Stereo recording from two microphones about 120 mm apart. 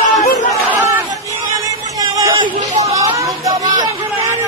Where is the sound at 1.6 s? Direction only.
30° right (ahead or behind).